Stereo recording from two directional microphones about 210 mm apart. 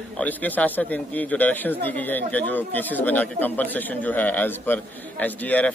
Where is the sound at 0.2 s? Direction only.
10° left (ahead or behind).